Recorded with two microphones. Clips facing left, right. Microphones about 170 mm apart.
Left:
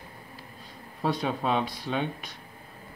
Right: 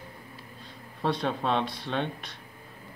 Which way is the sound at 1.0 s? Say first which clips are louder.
Even; 5° left (ahead or behind).